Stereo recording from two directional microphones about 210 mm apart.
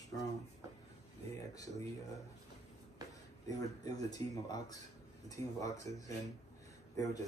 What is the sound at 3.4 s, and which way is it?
Speech, 15° left (ahead or behind).